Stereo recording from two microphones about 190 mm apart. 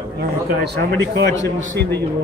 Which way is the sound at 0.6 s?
60° right (ahead or behind).